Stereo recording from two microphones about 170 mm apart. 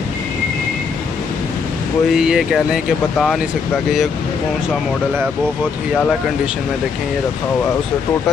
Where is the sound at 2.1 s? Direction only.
5° right (ahead or behind).